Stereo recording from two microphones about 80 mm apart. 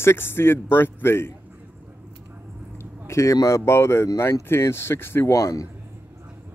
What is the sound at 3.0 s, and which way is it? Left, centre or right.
Speech, left.